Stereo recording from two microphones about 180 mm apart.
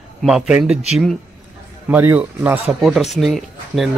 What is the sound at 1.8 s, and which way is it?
Speech, 10° right (ahead or behind).